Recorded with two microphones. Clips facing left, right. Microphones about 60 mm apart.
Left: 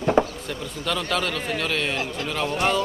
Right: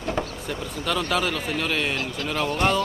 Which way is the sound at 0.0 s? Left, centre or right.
Left.